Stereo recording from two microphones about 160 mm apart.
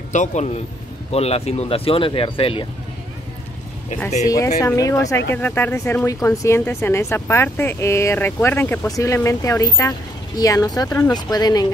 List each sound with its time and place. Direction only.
0.1 s a man's voice: 50° left (ahead or behind)
4.3 s speech: 20° left (ahead or behind)